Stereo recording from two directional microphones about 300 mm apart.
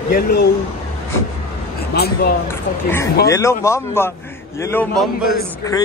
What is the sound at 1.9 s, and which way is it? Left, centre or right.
Speech, left.